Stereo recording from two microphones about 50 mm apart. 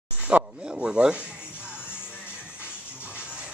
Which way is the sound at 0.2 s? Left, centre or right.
Right.